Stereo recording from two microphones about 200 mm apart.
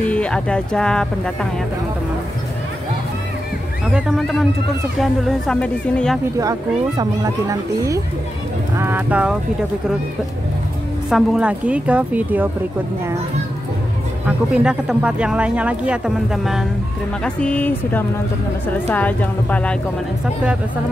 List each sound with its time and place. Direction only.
0.1 s speech: 5° left (ahead or behind)
3.9 s speech: centre (ahead or behind)
7.0 s speech: 15° right (ahead or behind)
11.1 s speech: 5° right (ahead or behind)
14.2 s a woman's voice: 5° right (ahead or behind)